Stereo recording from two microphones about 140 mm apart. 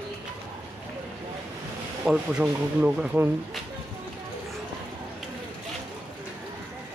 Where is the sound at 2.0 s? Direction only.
5° right (ahead or behind).